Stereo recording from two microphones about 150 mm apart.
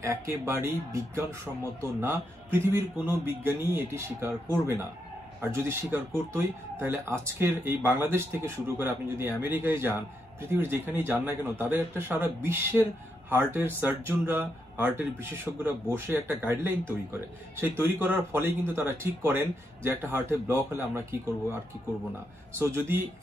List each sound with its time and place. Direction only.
0.0 s speech: 20° right (ahead or behind)